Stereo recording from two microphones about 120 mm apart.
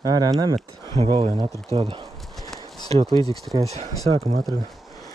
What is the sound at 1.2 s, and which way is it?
Speech, 45° right (ahead or behind).